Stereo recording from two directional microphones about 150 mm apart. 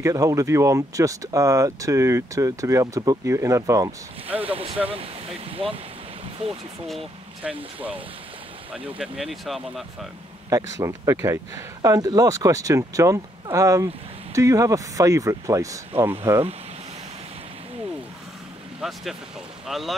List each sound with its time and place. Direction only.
0.0 s speech: 20° right (ahead or behind)
4.8 s speech: 40° right (ahead or behind)
6.9 s speech: 5° right (ahead or behind)
10.5 s speech: 20° right (ahead or behind)
18.8 s speech: centre (ahead or behind)